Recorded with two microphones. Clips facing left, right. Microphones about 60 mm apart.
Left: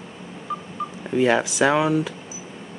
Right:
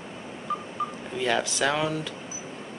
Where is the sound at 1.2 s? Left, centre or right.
Left.